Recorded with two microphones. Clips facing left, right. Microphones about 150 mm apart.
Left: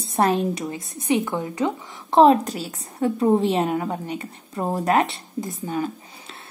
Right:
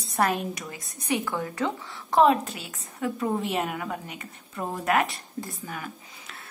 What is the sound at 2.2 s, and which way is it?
A woman's voice, 35° left (ahead or behind).